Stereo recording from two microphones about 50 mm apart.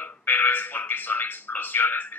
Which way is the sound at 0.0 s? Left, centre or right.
Left.